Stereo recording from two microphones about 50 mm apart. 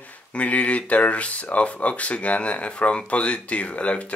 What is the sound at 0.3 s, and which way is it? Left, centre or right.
Speech, left.